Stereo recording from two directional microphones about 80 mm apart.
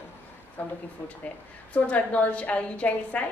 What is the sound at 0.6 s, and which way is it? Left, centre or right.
A woman's voice, left.